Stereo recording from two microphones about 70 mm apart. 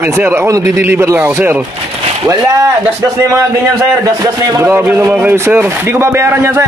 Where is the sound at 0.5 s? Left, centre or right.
Right.